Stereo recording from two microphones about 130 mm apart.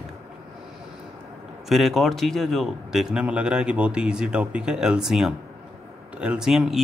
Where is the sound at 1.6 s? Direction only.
Centre (ahead or behind).